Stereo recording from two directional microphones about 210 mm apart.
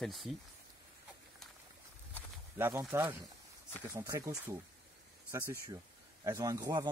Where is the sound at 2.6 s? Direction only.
10° right (ahead or behind).